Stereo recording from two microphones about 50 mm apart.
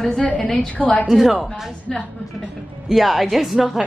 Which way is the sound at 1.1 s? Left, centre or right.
Centre.